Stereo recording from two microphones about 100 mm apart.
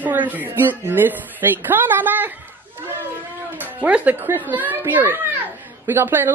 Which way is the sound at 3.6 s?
15° right (ahead or behind).